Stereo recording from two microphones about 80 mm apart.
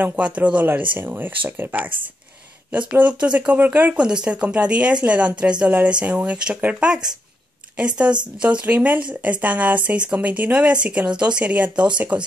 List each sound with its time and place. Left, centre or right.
0.0 s speech: centre